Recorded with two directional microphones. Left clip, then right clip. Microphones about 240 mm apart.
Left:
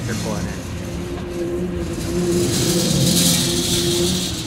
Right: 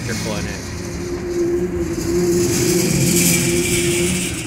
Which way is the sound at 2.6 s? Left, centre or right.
Centre.